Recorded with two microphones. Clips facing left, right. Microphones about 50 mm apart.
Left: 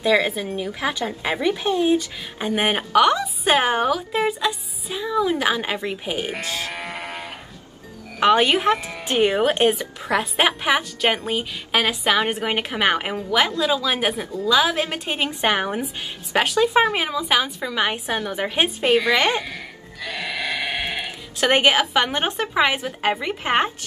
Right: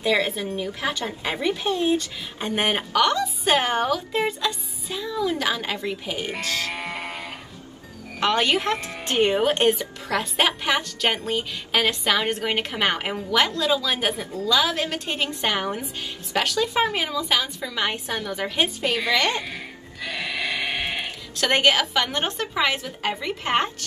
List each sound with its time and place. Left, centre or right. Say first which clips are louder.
0.1 s a woman's voice: left 3 dB; centre
7.0 s sheep: left 1 dB; left
8.2 s a woman's voice: left 5 dB; centre
20.2 s sheep: left 1 dB; centre
21.4 s a woman's voice: left 2 dB; centre